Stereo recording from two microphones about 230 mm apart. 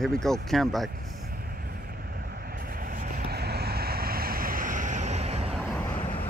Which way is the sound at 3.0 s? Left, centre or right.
Right.